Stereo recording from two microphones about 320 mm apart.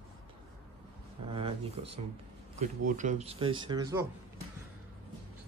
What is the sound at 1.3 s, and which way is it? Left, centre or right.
Speech, centre.